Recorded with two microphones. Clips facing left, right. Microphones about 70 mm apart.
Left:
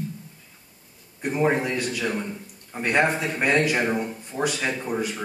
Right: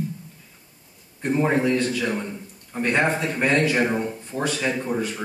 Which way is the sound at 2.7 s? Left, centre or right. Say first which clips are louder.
Even; centre.